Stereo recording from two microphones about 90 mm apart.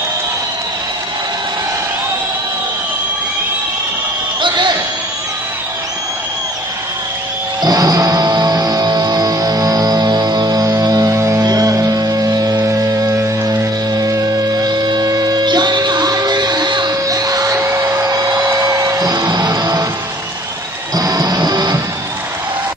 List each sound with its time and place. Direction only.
4.4 s a sound: 55° right (ahead or behind)
7.6 s music: 45° right (ahead or behind)
17.1 s hair dryer: 40° right (ahead or behind)
20.9 s music: 45° right (ahead or behind)